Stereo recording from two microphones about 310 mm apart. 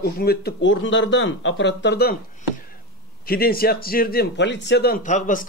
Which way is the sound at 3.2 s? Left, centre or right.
Left.